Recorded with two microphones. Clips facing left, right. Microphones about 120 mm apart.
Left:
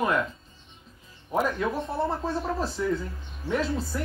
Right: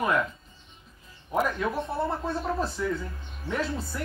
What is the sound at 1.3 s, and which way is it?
Speech, centre (ahead or behind).